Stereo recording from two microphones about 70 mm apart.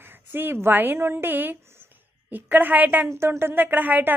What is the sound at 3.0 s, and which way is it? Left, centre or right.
Speech, right.